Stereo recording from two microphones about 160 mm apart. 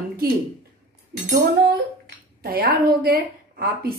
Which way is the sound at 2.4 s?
75° right (ahead or behind).